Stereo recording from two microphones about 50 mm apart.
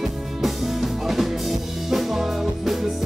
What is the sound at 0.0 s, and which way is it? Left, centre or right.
Music, centre.